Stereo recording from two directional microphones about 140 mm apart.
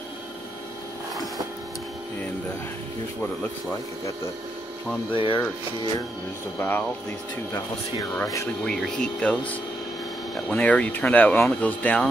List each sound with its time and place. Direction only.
5.1 s speech: 35° left (ahead or behind)
6.6 s speech: 15° left (ahead or behind)
8.6 s speech: 5° left (ahead or behind)